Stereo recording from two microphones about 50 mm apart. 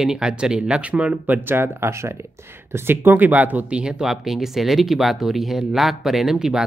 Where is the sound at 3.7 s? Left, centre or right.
Centre.